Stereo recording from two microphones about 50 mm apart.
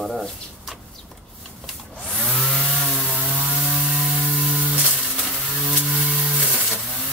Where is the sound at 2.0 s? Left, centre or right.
Centre.